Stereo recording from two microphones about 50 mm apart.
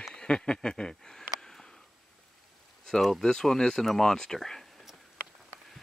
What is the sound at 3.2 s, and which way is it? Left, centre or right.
Speech, centre.